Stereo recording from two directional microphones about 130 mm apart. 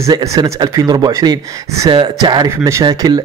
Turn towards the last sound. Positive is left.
turn(degrees=-30)  # may be behind; listen again after turning